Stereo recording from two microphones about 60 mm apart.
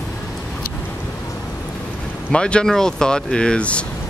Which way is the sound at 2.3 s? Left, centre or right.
Centre.